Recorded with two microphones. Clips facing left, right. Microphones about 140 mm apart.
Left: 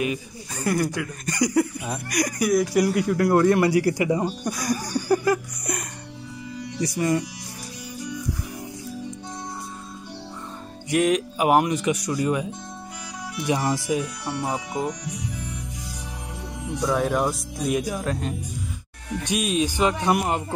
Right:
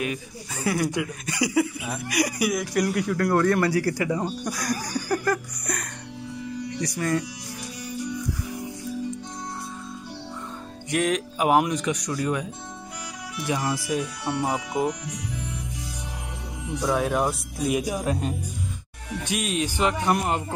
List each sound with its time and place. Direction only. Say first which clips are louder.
0.0 s speech: left 3 dB; centre (ahead or behind)
2.7 s a man's voice: left 3 dB; 5° left (ahead or behind)
7.0 s a man's voice: left 3 dB; 15° left (ahead or behind)
10.9 s speech: left 4 dB; centre (ahead or behind)
13.5 s speech: left 3 dB; 25° left (ahead or behind)
14.2 s speech: right 1 dB; centre (ahead or behind)
16.8 s speech: left 1 dB; 5° right (ahead or behind)
19.2 s a man's voice: left 3 dB; 15° left (ahead or behind)